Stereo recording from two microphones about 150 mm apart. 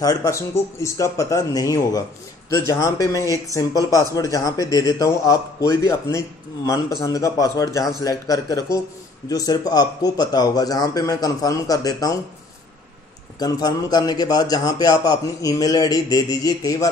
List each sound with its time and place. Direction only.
0.0 s speech: 25° left (ahead or behind)
13.4 s speech: 25° left (ahead or behind)